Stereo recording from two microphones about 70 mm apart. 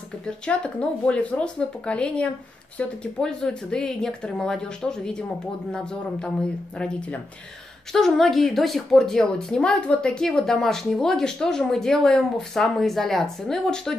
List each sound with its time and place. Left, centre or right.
0.5 s a woman's voice: centre